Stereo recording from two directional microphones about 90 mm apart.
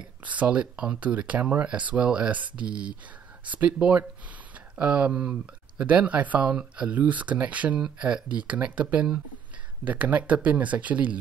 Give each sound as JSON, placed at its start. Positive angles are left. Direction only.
{"t": 0.2, "sound": "speech", "side_deg": -15}